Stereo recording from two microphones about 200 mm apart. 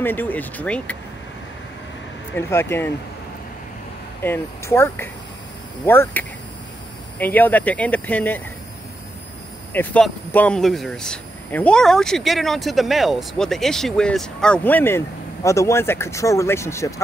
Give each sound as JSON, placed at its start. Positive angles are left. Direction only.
{"t": 0.0, "sound": "speech", "side_deg": 10}
{"t": 2.3, "sound": "speech", "side_deg": 10}
{"t": 4.2, "sound": "speech", "side_deg": 10}
{"t": 9.7, "sound": "speech", "side_deg": 5}